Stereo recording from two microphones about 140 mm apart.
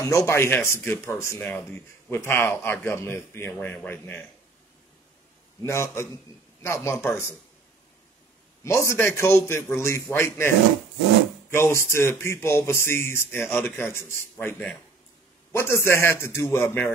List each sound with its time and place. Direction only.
0.0 s speech: 20° left (ahead or behind)
5.6 s a man's voice: 20° left (ahead or behind)
8.6 s a man's voice: 20° left (ahead or behind)
11.5 s speech: 15° left (ahead or behind)